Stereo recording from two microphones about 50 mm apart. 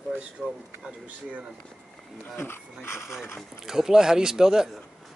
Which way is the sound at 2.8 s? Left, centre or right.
Left.